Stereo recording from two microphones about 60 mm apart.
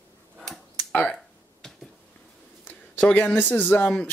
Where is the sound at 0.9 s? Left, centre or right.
Left.